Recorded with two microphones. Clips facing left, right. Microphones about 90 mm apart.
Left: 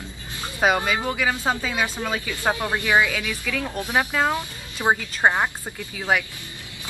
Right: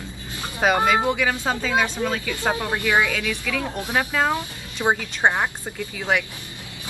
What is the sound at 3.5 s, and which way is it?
Speech, 20° right (ahead or behind).